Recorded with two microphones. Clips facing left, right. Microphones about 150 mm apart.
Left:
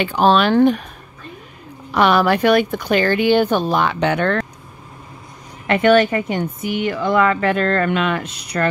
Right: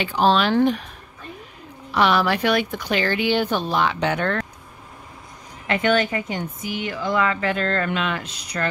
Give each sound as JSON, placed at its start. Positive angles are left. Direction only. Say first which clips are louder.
{"t": 0.0, "sound": "speech", "louder": "left 4 dB", "side_deg": 55}
{"t": 1.9, "sound": "a woman's voice", "louder": "left 4 dB", "side_deg": 50}
{"t": 5.7, "sound": "speech", "louder": "left 7 dB", "side_deg": 60}